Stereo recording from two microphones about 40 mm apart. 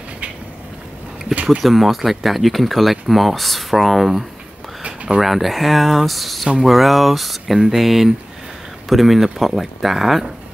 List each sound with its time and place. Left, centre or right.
1.3 s speech: right
1.6 s speech: centre
5.2 s speech: centre